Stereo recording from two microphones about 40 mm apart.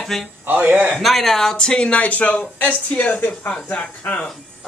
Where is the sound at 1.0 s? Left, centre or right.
Centre; by 4.2 s left.